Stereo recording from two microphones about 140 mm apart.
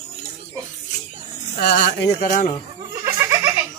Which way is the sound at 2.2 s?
70° left (ahead or behind).